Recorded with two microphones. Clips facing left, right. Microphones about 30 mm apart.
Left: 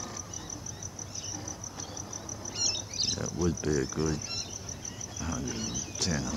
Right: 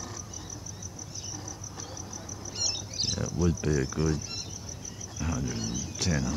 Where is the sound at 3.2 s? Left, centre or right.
Right.